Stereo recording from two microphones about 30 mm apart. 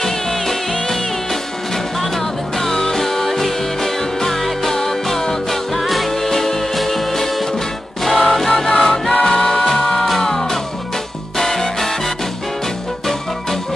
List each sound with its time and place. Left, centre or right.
0.0 s music: centre
8.8 s choir: centre
9.2 s music: centre